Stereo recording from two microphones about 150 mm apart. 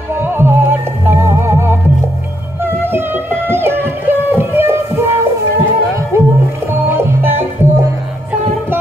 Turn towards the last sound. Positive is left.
turn(degrees=-15)  # may be behind; listen again after turning